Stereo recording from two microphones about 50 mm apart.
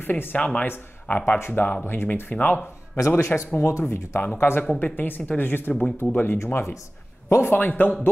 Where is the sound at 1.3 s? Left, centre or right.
Left.